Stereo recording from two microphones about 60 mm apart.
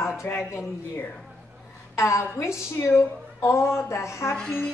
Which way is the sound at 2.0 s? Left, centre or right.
Left.